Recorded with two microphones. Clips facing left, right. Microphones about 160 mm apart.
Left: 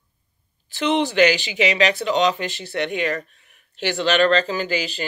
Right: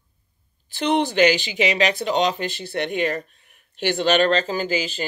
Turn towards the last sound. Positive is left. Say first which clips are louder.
# even
turn(degrees=-45)  # may be behind; listen again after turning